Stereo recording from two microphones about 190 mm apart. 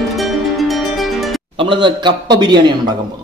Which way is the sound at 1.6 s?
25° right (ahead or behind).